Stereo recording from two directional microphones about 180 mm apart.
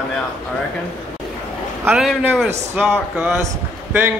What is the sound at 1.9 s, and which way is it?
Speech, centre (ahead or behind).